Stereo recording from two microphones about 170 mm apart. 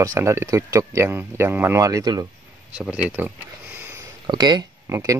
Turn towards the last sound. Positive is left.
turn(degrees=-20)  # may be behind; listen again after turning